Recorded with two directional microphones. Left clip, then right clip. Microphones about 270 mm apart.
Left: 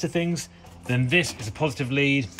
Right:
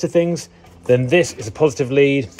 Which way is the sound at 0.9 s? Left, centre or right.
Centre.